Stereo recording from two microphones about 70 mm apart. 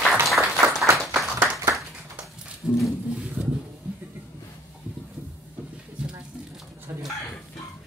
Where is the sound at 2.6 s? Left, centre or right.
Centre.